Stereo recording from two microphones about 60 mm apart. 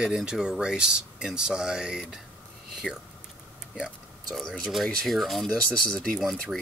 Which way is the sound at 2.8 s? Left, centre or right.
Left.